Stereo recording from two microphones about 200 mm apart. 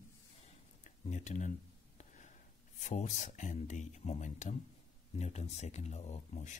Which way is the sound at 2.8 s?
35° left (ahead or behind).